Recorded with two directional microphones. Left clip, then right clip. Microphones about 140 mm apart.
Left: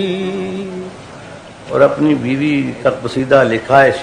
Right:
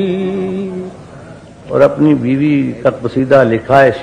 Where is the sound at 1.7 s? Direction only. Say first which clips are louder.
Right 2 dB; 35° right (ahead or behind).